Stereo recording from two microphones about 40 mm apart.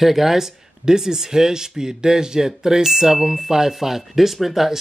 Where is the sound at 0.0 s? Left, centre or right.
Centre.